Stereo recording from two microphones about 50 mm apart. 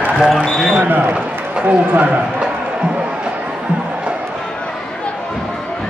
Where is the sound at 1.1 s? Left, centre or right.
Right.